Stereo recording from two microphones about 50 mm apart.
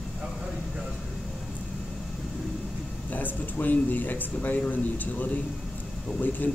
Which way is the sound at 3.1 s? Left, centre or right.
Left.